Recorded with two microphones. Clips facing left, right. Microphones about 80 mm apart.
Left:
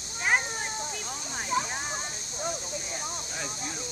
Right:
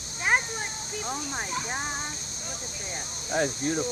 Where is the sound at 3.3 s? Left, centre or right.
Right.